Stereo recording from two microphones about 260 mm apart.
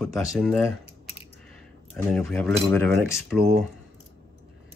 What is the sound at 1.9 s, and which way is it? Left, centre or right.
Speech, centre.